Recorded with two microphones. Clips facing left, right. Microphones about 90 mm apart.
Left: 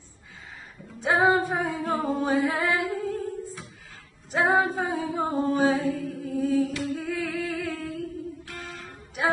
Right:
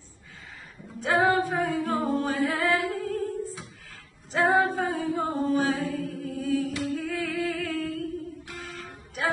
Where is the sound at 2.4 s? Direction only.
5° left (ahead or behind).